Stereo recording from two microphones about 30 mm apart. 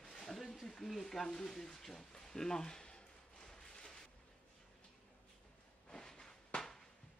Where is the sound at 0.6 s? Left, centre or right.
Centre.